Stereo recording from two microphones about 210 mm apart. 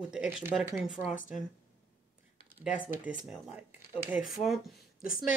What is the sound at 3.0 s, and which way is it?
Speech, 5° right (ahead or behind).